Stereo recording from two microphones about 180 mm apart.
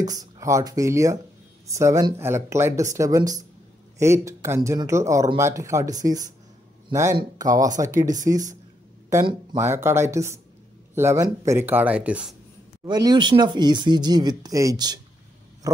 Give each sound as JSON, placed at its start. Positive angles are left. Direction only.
{"t": 0.0, "sound": "speech", "side_deg": -20}
{"t": 9.6, "sound": "speech", "side_deg": -15}
{"t": 12.8, "sound": "speech", "side_deg": -25}
{"t": 15.6, "sound": "a sound", "side_deg": -20}